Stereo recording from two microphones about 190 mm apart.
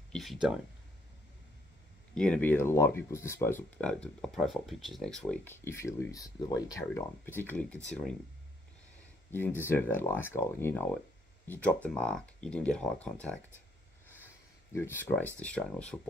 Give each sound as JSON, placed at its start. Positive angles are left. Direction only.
{"t": 0.1, "sound": "a sound", "side_deg": 0}
{"t": 2.1, "sound": "speech", "side_deg": 5}
{"t": 9.6, "sound": "speech", "side_deg": 10}